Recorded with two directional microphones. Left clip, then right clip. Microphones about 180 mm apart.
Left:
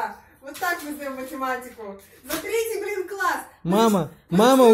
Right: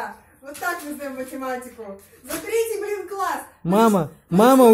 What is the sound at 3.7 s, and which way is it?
Speech, 15° right (ahead or behind).